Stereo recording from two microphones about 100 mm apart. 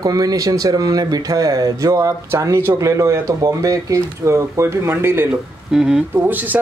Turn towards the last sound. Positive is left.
turn(degrees=-15)  # may be behind; listen again after turning